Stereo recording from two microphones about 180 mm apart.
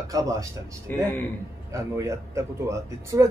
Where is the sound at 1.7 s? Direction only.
15° right (ahead or behind).